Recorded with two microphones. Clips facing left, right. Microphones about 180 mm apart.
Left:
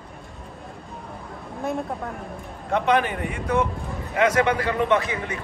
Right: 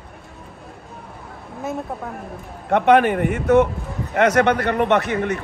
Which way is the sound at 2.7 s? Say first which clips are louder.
Right 7 dB; 60° right (ahead or behind).